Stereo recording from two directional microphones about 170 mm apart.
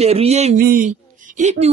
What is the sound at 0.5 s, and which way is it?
A man's voice, 55° right (ahead or behind).